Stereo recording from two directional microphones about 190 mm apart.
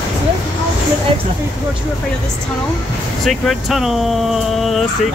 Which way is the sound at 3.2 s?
Centre (ahead or behind).